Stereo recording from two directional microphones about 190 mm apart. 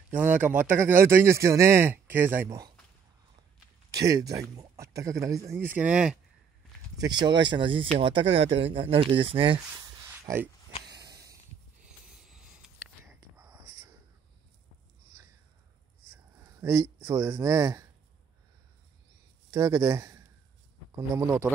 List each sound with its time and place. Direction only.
0.1 s speech: 10° right (ahead or behind)
3.9 s speech: 20° right (ahead or behind)
7.0 s speech: 25° right (ahead or behind)
10.2 s speech: 10° right (ahead or behind)
10.9 s snort: 60° right (ahead or behind)
11.8 s a sound: 5° right (ahead or behind)
13.0 s a sound: 15° right (ahead or behind)
16.3 s speech: 15° right (ahead or behind)
19.5 s speech: 20° right (ahead or behind)